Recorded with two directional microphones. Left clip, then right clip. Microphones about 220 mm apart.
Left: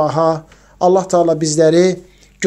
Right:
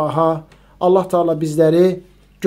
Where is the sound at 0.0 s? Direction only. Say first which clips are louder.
Left 2 dB; 25° left (ahead or behind).